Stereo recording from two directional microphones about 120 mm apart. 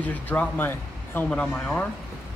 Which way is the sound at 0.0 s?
15° left (ahead or behind).